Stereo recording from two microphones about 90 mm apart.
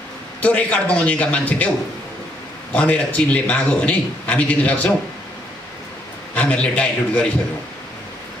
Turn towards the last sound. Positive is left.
turn(degrees=15)  # may be behind; listen again after turning